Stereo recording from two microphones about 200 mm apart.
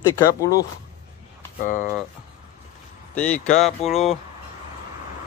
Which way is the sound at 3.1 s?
5° left (ahead or behind).